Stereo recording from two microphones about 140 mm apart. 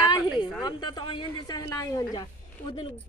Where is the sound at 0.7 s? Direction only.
30° left (ahead or behind).